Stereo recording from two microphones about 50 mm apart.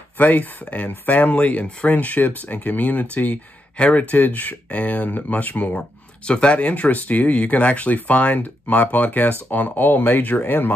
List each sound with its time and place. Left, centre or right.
0.2 s speech: left